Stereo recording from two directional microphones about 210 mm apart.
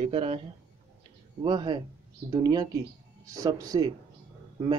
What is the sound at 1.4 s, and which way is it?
Speech, 20° right (ahead or behind).